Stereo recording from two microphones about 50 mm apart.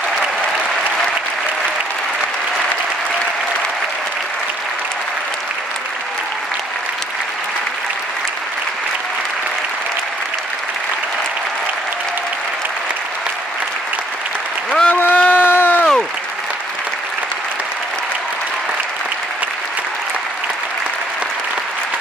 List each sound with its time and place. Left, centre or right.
14.9 s run: left